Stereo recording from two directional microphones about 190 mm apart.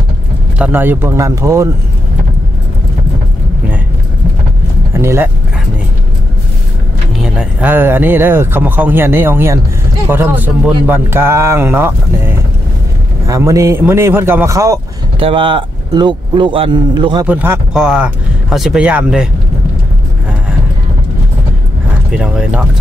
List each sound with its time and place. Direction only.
0.6 s speech: 10° right (ahead or behind)
4.9 s speech: 15° right (ahead or behind)
7.2 s speech: 5° right (ahead or behind)
15.1 s speech: 30° right (ahead or behind)
17.3 s speech: 10° right (ahead or behind)
22.1 s speech: 5° right (ahead or behind)